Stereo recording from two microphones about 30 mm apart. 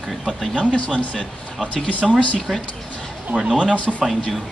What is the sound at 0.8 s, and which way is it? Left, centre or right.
Speech, left.